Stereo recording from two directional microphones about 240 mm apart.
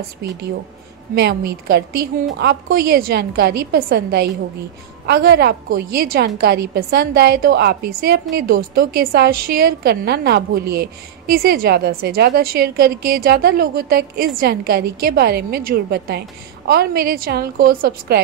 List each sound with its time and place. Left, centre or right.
1.1 s a woman's voice: right